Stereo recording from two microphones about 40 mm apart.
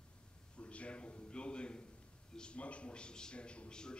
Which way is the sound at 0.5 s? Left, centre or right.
Left.